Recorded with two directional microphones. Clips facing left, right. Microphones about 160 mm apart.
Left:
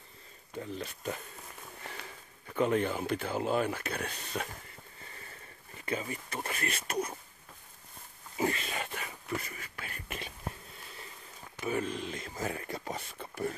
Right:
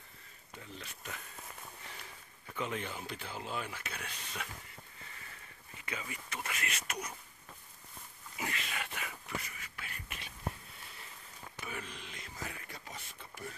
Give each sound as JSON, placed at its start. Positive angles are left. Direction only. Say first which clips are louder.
{"t": 0.6, "sound": "speech", "louder": "left 10 dB", "side_deg": 40}
{"t": 2.5, "sound": "speech", "louder": "left 10 dB", "side_deg": 45}
{"t": 5.8, "sound": "speech", "louder": "left 8 dB", "side_deg": 40}
{"t": 8.4, "sound": "a sound", "louder": "left 8 dB", "side_deg": 35}
{"t": 11.6, "sound": "speech", "louder": "left 12 dB", "side_deg": 40}